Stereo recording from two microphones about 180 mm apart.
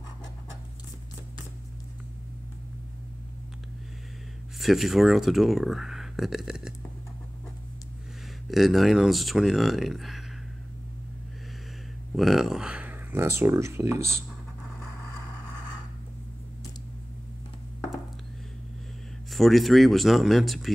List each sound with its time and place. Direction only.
4.6 s speech: centre (ahead or behind)
8.5 s speech: centre (ahead or behind)
12.2 s speech: centre (ahead or behind)
19.3 s speech: centre (ahead or behind)